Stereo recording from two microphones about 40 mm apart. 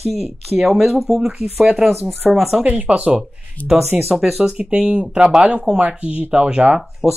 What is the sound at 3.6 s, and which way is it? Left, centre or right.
Speech, left.